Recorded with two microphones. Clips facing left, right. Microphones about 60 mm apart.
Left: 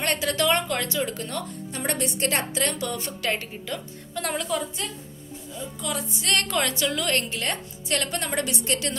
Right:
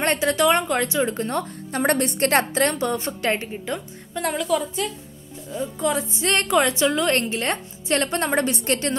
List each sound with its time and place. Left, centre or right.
0.0 s a woman's voice: right
1.7 s a woman's voice: right
4.2 s a woman's voice: centre
5.8 s a woman's voice: right